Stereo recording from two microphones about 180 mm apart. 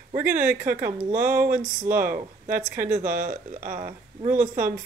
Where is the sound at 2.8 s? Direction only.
45° right (ahead or behind).